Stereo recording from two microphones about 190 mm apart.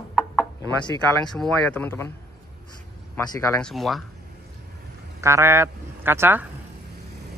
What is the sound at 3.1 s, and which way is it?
Speech, 15° left (ahead or behind).